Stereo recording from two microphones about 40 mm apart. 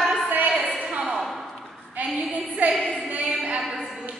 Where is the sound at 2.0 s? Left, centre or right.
Right.